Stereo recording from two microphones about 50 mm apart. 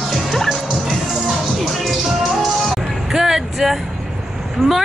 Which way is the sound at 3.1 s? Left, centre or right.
Centre.